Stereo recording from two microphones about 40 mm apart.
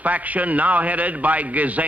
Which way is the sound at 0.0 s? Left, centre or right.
Right.